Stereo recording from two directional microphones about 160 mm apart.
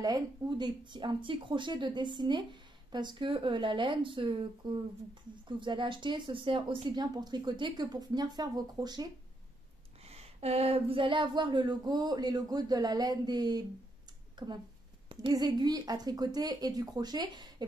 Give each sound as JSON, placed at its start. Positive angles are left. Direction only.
{"t": 0.0, "sound": "speech", "side_deg": -25}
{"t": 10.0, "sound": "speech", "side_deg": -40}
{"t": 15.0, "sound": "speech", "side_deg": -30}